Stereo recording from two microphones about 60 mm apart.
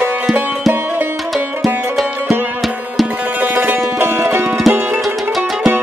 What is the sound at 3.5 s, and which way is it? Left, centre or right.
Music, right.